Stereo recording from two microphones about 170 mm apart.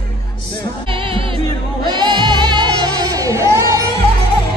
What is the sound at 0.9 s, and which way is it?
Music, 30° right (ahead or behind).